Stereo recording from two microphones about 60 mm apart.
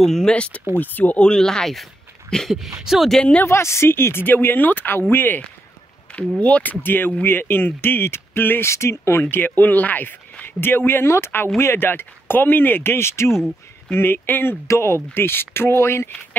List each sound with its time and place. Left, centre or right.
0.0 s speech: centre
0.3 s speech: centre
1.2 s a woman's voice: centre
3.4 s speech: left
6.1 s a sound: centre
6.4 s speech: left
9.3 s speech: left
13.9 s speech: left
14.7 s speech: left